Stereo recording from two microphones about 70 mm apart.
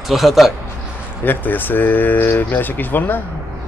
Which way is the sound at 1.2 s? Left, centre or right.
Left.